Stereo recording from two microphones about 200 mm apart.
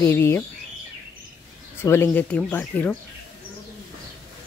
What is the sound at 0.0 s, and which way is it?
Speech, 10° left (ahead or behind).